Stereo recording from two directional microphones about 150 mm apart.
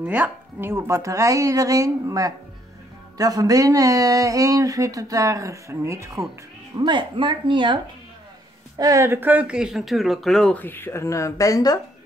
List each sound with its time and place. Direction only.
0.0 s speech: 10° right (ahead or behind)
6.8 s speech: 30° right (ahead or behind)
8.7 s speech: 20° right (ahead or behind); by 11.8 s 25° left (ahead or behind)